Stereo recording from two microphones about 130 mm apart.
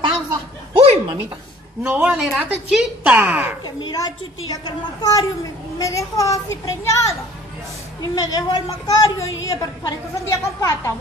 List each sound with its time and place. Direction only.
0.0 s a sound: 45° right (ahead or behind)
2.0 s a woman's voice: 5° right (ahead or behind)
3.6 s a child's voice: 30° left (ahead or behind)